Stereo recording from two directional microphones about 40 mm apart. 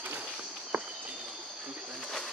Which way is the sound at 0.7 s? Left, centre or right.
Right.